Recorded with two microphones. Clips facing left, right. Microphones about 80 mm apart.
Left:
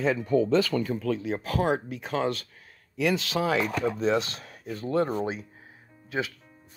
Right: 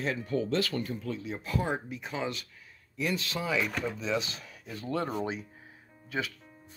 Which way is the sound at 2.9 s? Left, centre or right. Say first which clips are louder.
Left 7 dB; left.